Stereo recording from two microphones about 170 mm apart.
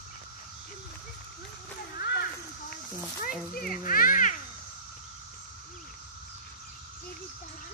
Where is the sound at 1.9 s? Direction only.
65° left (ahead or behind).